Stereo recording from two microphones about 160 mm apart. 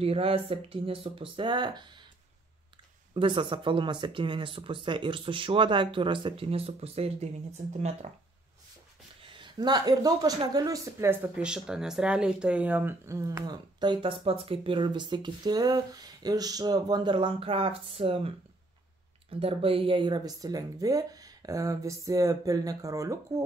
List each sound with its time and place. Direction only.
0.0 s speech: 35° right (ahead or behind)
3.2 s speech: 35° right (ahead or behind)
9.2 s speech: 30° right (ahead or behind)
11.3 s speech: 5° right (ahead or behind); by 18.3 s 35° right (ahead or behind)
19.4 s speech: 35° right (ahead or behind); by 23.4 s 20° right (ahead or behind)